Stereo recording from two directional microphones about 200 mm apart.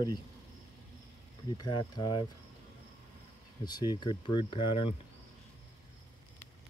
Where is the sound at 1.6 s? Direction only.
20° left (ahead or behind).